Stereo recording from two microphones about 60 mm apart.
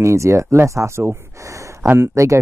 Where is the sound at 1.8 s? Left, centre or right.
Right.